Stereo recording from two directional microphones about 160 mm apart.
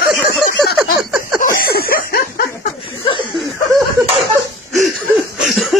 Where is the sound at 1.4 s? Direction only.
70° left (ahead or behind).